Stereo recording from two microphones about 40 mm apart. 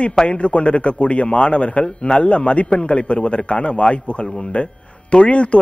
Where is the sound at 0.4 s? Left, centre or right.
Left.